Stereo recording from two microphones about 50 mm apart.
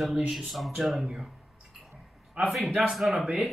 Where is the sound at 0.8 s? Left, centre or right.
Centre.